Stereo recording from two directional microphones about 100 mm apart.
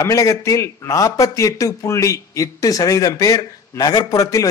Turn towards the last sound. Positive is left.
turn(degrees=35)  # may be behind; listen again after turning